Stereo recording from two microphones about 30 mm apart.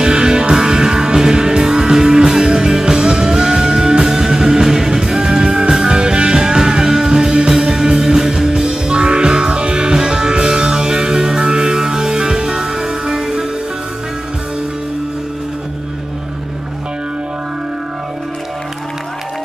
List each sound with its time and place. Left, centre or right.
0.0 s music: right